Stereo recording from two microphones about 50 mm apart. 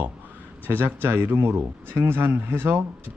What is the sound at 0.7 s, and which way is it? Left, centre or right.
Speech, right.